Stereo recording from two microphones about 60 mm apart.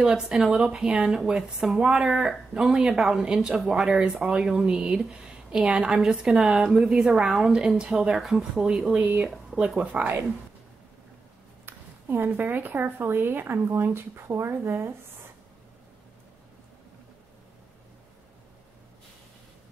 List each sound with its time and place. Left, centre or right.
0.0 s speech: centre
9.8 s speech: right
11.6 s speech: right